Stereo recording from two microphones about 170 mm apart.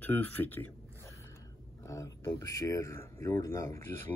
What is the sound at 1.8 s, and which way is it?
Speech, 20° left (ahead or behind).